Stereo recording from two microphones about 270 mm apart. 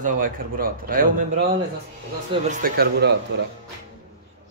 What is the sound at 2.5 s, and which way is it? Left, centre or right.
A man's voice, right.